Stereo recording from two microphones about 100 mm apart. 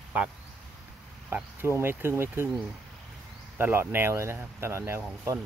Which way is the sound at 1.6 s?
25° right (ahead or behind).